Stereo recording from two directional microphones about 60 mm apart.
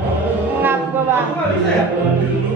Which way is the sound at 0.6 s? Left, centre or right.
Right.